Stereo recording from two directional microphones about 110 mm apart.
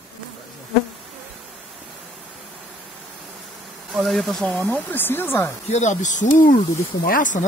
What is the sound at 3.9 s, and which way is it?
Speech, centre (ahead or behind).